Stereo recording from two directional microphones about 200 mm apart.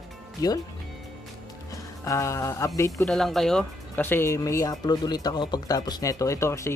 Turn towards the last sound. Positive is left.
turn(degrees=15)  # may be behind; listen again after turning